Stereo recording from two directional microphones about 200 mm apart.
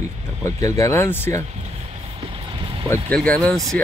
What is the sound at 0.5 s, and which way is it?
Speech, 15° left (ahead or behind).